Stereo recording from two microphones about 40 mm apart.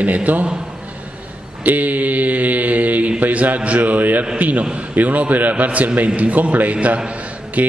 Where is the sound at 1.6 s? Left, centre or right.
Right.